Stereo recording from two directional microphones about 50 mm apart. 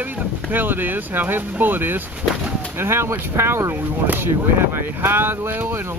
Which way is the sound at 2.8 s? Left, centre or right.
Right.